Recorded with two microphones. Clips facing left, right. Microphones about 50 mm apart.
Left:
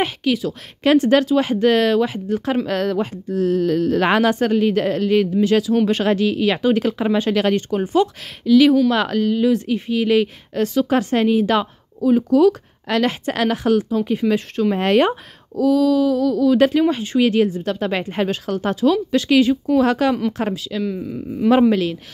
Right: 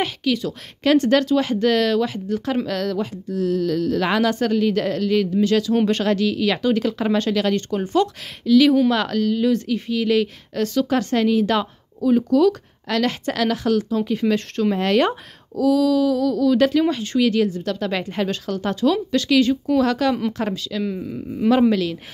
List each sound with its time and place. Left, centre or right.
0.0 s a woman's voice: centre; by 4.3 s left
4.3 s speech: left
7.0 s speech: centre
7.2 s speech: left
7.5 s speech: centre
14.8 s speech: left
15.0 s speech: centre
18.6 s speech: centre
20.8 s speech: centre
21.5 s speech: left